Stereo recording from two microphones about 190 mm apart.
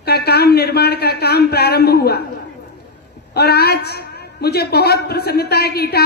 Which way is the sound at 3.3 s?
55° left (ahead or behind).